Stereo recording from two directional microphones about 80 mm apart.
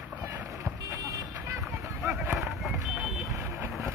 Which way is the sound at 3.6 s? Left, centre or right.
Right.